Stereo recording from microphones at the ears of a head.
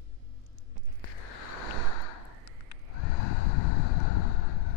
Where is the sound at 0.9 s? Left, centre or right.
Left.